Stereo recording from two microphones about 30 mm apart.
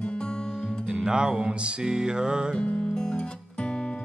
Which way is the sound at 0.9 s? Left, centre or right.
Right.